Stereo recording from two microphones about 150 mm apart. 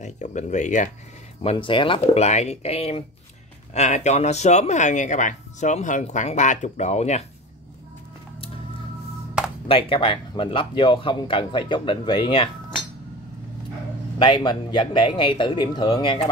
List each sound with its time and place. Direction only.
0.0 s speech: 50° left (ahead or behind)
1.4 s speech: 35° left (ahead or behind)
9.7 s speech: 40° left (ahead or behind)
14.1 s speech: 30° left (ahead or behind)